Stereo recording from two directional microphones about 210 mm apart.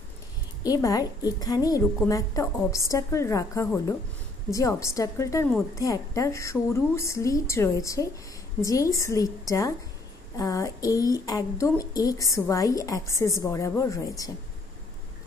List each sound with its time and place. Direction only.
0.7 s a woman's voice: 15° left (ahead or behind)